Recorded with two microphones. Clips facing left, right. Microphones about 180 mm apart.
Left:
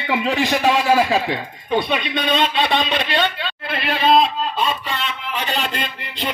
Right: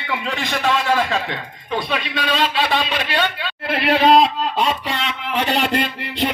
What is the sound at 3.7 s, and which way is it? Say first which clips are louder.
A man's voice: right 3 dB; 75° right (ahead or behind).